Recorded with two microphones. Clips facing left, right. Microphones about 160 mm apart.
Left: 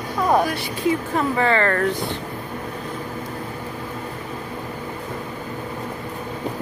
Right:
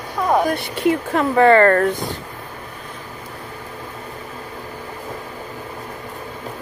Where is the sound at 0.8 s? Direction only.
70° right (ahead or behind); by 1.9 s 45° right (ahead or behind).